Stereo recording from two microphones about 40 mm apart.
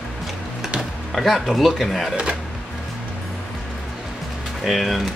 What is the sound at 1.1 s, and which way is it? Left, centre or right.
Speech, centre.